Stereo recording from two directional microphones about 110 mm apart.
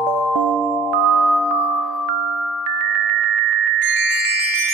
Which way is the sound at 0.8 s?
Centre (ahead or behind).